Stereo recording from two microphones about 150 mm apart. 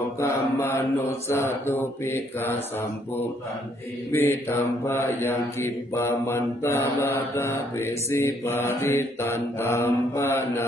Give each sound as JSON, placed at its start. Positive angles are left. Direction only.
{"t": 0.2, "sound": "mantra", "side_deg": 20}
{"t": 4.1, "sound": "mantra", "side_deg": 15}